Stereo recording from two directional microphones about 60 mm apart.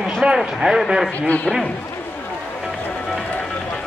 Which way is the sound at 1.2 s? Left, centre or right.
Left.